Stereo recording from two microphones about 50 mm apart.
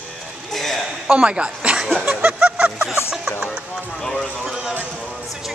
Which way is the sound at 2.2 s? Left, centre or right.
Right.